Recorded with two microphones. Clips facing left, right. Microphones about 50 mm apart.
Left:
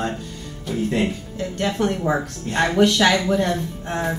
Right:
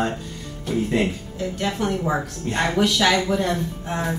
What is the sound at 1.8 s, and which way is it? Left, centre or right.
Speech, centre.